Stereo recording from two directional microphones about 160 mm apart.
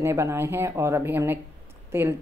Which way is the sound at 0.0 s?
15° right (ahead or behind).